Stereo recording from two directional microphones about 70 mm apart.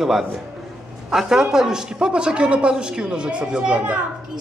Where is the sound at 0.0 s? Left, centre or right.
Centre.